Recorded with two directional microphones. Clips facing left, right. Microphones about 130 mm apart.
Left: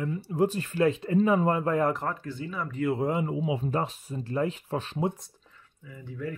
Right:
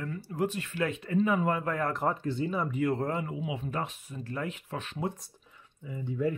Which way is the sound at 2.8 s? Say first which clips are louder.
Left 5 dB; 10° left (ahead or behind).